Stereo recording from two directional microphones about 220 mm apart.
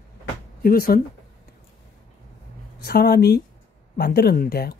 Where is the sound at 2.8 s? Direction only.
45° left (ahead or behind).